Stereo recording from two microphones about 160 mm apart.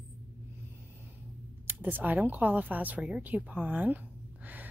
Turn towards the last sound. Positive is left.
turn(degrees=-10)  # may be behind; listen again after turning